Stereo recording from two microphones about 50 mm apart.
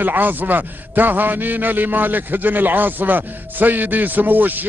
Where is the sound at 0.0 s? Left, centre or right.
Right.